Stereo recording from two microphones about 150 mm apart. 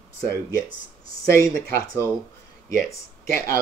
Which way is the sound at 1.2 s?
20° left (ahead or behind).